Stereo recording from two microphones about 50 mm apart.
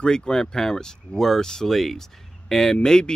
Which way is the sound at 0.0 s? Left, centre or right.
Centre.